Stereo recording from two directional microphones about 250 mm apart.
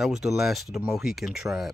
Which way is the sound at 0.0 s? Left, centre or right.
Centre.